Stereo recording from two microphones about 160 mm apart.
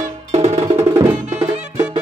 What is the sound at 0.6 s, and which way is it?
Music, 30° right (ahead or behind).